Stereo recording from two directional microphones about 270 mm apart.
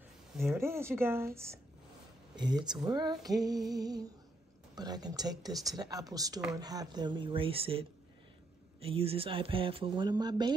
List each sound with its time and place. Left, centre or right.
0.5 s speech: centre
8.8 s speech: right